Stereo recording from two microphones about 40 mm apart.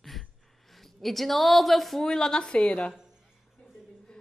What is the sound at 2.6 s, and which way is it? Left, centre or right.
Speech, left.